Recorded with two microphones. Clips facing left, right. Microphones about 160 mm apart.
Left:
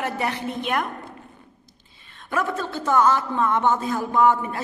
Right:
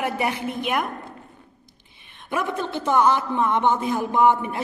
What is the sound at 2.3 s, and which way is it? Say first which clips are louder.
A woman's voice: even; 15° right (ahead or behind).